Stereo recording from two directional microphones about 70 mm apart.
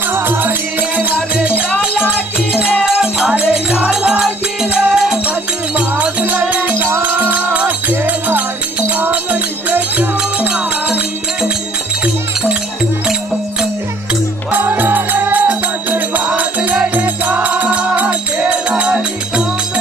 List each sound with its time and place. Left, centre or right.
0.1 s music: right
1.8 s music: centre
8.0 s music: right
14.5 s music: right; by 19.4 s centre